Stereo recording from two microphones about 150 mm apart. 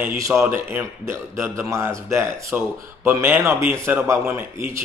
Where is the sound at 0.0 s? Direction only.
20° right (ahead or behind).